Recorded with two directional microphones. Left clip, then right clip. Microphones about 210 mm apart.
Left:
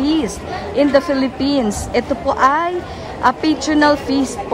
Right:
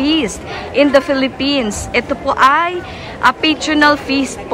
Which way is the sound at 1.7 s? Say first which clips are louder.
Right 1 dB; 15° left (ahead or behind).